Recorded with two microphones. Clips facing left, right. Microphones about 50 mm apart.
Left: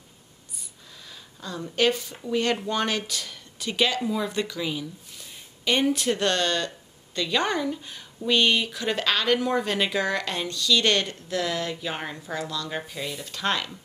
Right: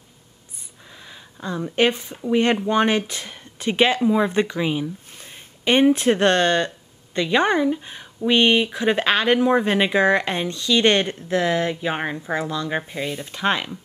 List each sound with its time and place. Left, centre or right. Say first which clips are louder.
1.0 s speech: right 7 dB; right